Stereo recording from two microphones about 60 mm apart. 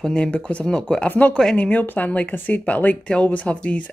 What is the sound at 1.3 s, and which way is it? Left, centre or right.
Speech, centre.